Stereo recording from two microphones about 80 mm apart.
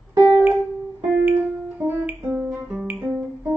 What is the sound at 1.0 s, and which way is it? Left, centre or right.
Music, right.